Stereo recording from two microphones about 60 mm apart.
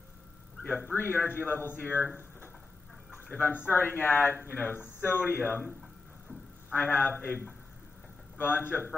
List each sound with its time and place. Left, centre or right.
0.7 s a man's voice: left
0.9 s speech: left
6.7 s a man's voice: left